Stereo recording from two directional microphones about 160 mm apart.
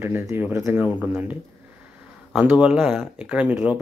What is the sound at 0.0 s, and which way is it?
Speech, 15° right (ahead or behind).